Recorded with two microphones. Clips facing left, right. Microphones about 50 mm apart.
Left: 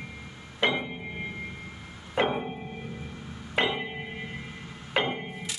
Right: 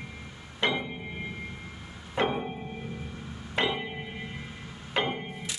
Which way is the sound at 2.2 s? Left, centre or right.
Centre.